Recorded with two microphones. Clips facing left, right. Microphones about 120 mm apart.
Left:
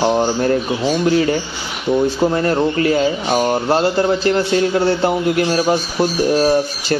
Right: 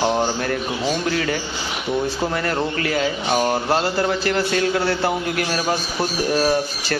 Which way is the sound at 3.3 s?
10° left (ahead or behind).